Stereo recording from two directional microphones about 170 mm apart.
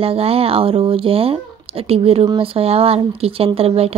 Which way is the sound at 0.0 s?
35° right (ahead or behind).